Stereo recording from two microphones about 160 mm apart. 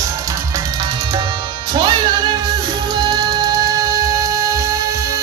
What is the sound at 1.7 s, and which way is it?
Music, 30° right (ahead or behind).